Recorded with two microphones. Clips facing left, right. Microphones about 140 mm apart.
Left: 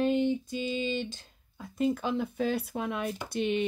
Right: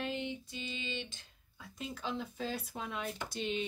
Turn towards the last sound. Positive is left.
turn(degrees=60)  # may be behind; listen again after turning